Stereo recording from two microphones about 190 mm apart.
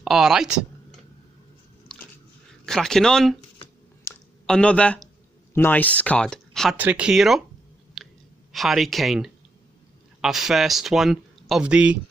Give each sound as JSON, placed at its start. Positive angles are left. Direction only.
{"t": 0.0, "sound": "speech", "side_deg": 0}
{"t": 1.9, "sound": "biting", "side_deg": 5}
{"t": 2.6, "sound": "speech", "side_deg": 0}
{"t": 4.0, "sound": "a sound", "side_deg": 10}
{"t": 5.5, "sound": "speech", "side_deg": 10}
{"t": 7.9, "sound": "clicking", "side_deg": 0}
{"t": 10.2, "sound": "speech", "side_deg": 0}